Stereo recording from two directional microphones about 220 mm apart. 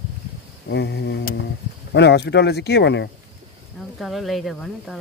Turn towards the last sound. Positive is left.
turn(degrees=0)  # may be behind; listen again after turning